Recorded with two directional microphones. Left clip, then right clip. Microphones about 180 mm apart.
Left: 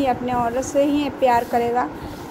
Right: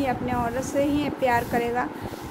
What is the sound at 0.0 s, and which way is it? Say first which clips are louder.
A woman's voice: left 5 dB; 5° left (ahead or behind).